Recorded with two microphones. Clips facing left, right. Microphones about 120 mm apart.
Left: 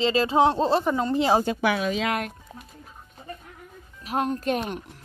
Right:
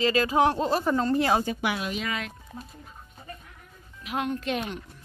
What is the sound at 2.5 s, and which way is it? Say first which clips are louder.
Speech: right 2 dB; 25° left (ahead or behind).